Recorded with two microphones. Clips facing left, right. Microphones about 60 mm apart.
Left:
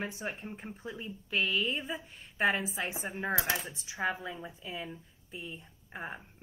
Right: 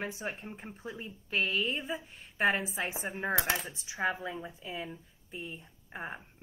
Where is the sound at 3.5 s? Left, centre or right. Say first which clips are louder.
Right 1 dB; right.